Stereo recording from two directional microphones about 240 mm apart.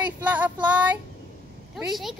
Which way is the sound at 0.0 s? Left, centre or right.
Centre.